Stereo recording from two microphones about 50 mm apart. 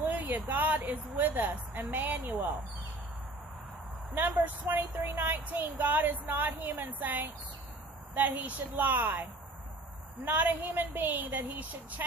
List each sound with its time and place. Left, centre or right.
0.0 s a sound: right
1.2 s a woman's voice: right
4.1 s a woman's voice: right